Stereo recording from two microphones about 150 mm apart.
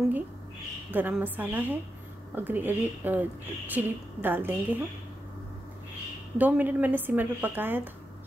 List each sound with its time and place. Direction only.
0.9 s a woman's voice: 10° right (ahead or behind)
6.3 s a woman's voice: 10° right (ahead or behind)